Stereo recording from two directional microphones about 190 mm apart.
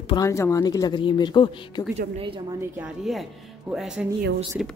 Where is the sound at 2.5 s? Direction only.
10° right (ahead or behind).